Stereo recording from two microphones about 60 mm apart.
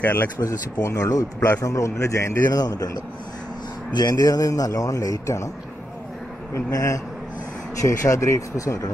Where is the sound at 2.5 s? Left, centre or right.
Left.